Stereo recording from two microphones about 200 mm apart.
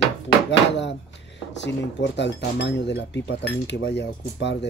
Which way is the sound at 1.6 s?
60° left (ahead or behind).